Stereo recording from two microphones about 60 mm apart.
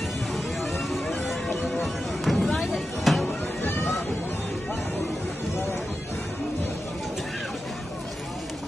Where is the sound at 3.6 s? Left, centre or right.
Left.